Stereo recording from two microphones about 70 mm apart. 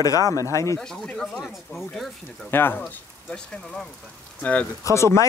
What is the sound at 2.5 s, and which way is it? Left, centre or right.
Speech, left.